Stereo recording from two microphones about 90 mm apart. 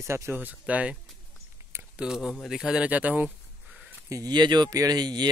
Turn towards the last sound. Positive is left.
turn(degrees=-50)  # may be behind; listen again after turning